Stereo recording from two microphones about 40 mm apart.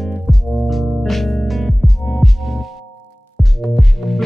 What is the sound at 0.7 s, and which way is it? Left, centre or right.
Music, centre.